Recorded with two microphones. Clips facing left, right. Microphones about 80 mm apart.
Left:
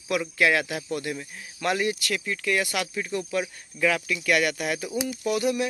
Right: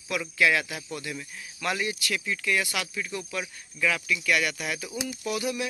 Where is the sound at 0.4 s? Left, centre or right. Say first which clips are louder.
Even; left.